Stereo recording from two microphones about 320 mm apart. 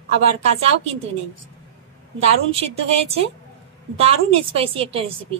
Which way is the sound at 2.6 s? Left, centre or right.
Centre.